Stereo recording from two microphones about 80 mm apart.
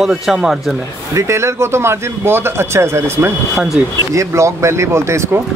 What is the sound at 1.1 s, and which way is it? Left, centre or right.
Speech, right.